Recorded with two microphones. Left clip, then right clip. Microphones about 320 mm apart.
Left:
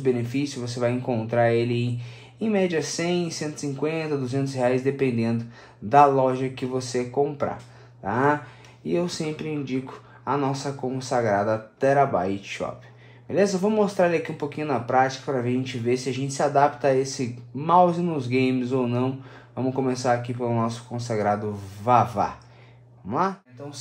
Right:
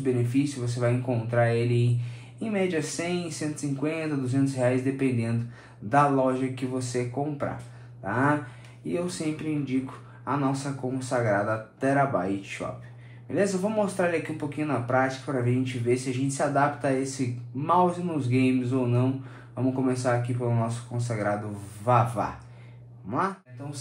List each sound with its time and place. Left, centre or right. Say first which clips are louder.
0.0 s speech: left 2 dB; left
10.2 s speech: left 3 dB; left